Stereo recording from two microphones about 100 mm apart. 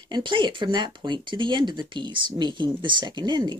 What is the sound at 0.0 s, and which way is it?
Speech, 50° right (ahead or behind).